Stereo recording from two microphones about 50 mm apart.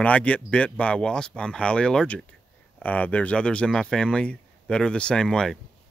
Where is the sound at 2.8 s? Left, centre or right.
Left; by 5.4 s centre.